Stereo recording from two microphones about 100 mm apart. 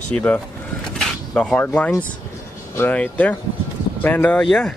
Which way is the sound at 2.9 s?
15° left (ahead or behind).